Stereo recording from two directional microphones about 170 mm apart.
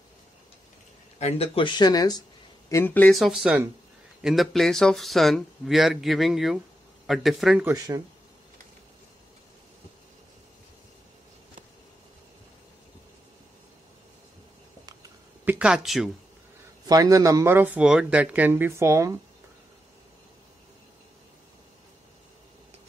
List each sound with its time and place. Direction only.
1.2 s speech: 35° left (ahead or behind)
2.7 s speech: 10° left (ahead or behind)
3.2 s speech: centre (ahead or behind)
7.6 s speech: 20° right (ahead or behind)
15.4 s speech: 10° right (ahead or behind)
16.8 s speech: 20° right (ahead or behind)